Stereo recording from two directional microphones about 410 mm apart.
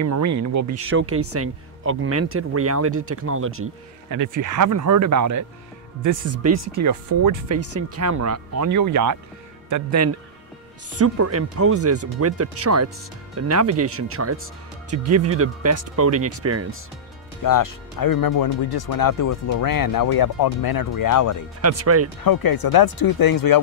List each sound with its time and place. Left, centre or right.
0.0 s speech: right
4.1 s speech: right
7.5 s speech: right
17.4 s speech: left
21.5 s speech: right
22.2 s speech: left